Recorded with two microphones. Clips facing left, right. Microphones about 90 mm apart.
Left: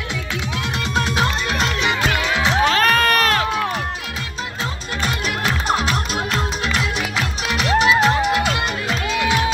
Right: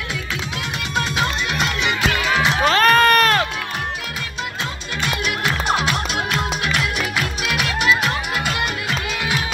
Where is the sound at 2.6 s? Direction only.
Centre (ahead or behind).